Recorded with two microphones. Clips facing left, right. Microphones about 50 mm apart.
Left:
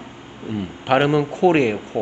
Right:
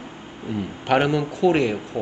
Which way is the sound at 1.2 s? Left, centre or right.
Left.